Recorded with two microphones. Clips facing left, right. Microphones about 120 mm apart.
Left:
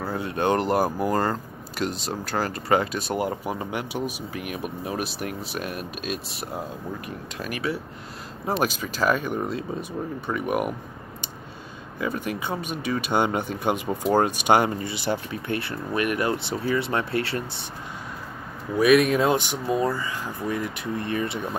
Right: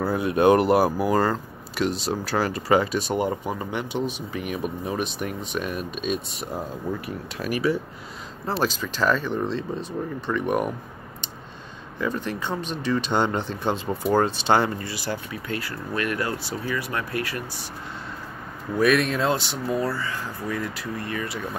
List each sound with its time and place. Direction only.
0.0 s speech: 10° right (ahead or behind)
8.5 s speech: 15° left (ahead or behind)
12.0 s speech: 10° left (ahead or behind); by 17.6 s 30° left (ahead or behind)
18.8 s speech: 10° left (ahead or behind)